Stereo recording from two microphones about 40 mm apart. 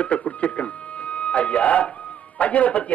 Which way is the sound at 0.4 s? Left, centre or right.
Left.